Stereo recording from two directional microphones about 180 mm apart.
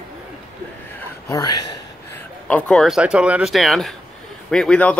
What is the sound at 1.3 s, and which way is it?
Speech, 20° left (ahead or behind).